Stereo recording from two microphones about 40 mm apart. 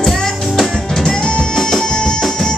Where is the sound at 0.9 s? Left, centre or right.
Centre.